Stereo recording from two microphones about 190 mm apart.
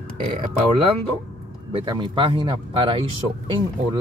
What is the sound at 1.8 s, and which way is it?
Speech, 25° right (ahead or behind).